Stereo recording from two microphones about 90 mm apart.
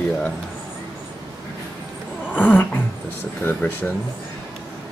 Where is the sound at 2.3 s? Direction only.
20° left (ahead or behind).